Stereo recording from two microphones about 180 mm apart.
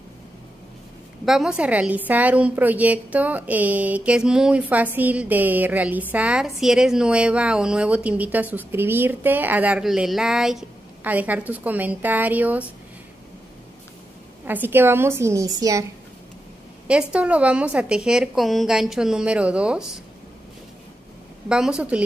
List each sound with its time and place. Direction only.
1.2 s a woman's voice: centre (ahead or behind)
14.4 s a woman's voice: 10° right (ahead or behind)
16.8 s a woman's voice: 5° right (ahead or behind)
21.5 s a woman's voice: 5° right (ahead or behind)